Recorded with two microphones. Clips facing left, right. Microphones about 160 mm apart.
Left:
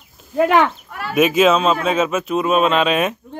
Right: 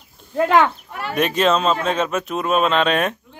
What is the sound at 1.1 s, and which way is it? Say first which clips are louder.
A man's voice: left 4 dB; 5° left (ahead or behind).